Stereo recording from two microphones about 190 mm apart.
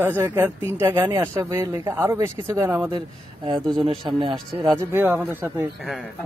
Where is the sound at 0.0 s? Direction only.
10° right (ahead or behind).